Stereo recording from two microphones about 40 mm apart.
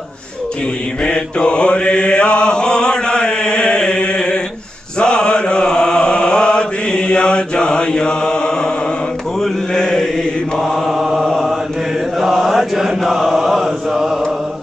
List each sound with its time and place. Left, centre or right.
1.0 s mantra: left
10.9 s chant: centre